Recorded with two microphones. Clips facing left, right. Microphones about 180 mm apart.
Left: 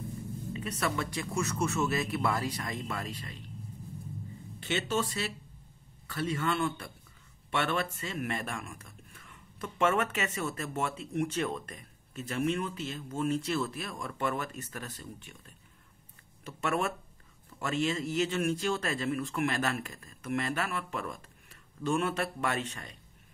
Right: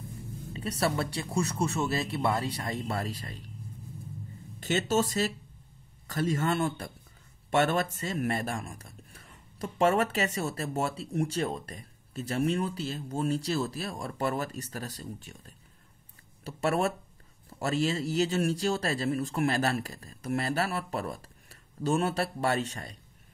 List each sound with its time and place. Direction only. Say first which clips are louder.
0.5 s speech: right 4 dB; 35° right (ahead or behind)
4.6 s speech: right 4 dB; 40° right (ahead or behind)